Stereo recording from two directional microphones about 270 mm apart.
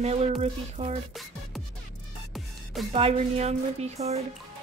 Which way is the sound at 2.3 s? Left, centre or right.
Centre.